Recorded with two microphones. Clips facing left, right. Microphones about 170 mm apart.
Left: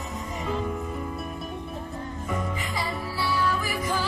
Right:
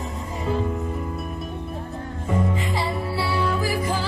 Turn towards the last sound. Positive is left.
turn(degrees=-30)  # may be behind; listen again after turning